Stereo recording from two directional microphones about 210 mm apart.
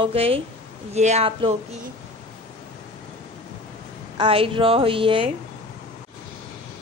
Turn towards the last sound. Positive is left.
turn(degrees=-25)  # may be behind; listen again after turning